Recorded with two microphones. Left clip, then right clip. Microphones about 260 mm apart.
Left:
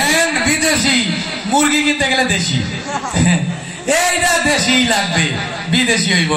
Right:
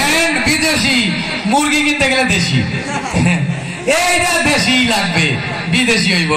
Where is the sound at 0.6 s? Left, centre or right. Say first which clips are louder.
Right 1 dB; left.